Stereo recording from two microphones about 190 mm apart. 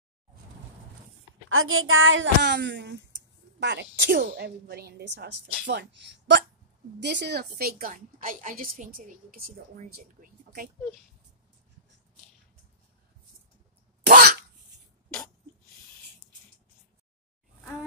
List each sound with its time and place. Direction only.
1.5 s a woman's voice: 90° right; by 10.7 s 50° right (ahead or behind)
14.0 s cough: 55° right (ahead or behind)